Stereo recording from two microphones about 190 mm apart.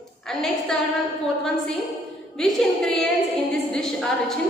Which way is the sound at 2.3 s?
Centre (ahead or behind).